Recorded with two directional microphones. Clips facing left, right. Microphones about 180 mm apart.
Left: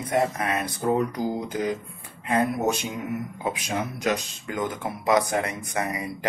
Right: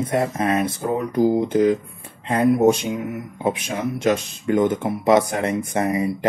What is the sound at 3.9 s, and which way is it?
Speech, 25° right (ahead or behind).